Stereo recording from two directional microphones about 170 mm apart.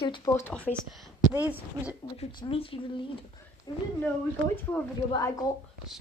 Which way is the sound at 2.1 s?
30° left (ahead or behind).